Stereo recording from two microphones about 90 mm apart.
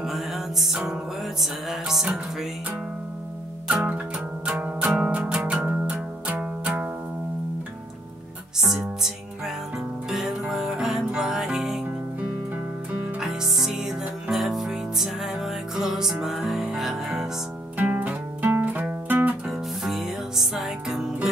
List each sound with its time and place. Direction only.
0.0 s music: 5° right (ahead or behind)
3.6 s music: 15° right (ahead or behind)
5.4 s music: 5° right (ahead or behind)
5.7 s music: 15° right (ahead or behind)
8.5 s music: 5° right (ahead or behind)
13.2 s music: 5° right (ahead or behind)
17.7 s music: 20° right (ahead or behind)
19.4 s music: 5° right (ahead or behind)